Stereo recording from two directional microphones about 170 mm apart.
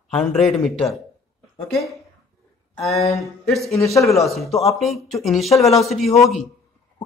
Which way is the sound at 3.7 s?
20° left (ahead or behind).